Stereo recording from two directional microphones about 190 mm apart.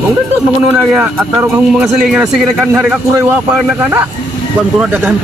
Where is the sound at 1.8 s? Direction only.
5° right (ahead or behind).